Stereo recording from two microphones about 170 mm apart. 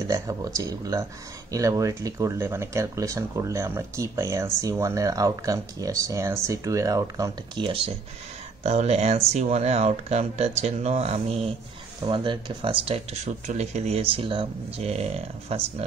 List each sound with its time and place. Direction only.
0.1 s speech: 20° right (ahead or behind); by 15.6 s 35° right (ahead or behind)